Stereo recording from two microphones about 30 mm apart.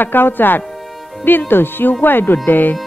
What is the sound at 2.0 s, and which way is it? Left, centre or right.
Speech, left.